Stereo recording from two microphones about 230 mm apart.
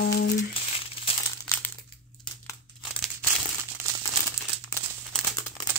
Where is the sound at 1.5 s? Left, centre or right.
Centre.